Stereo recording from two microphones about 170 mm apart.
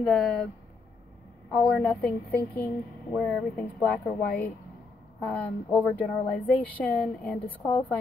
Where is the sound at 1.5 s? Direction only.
5° left (ahead or behind).